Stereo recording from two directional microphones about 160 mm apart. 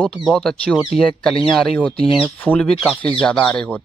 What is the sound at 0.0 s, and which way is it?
Speech, centre (ahead or behind).